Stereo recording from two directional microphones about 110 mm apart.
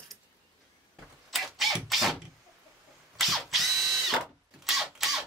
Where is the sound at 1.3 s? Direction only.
Centre (ahead or behind).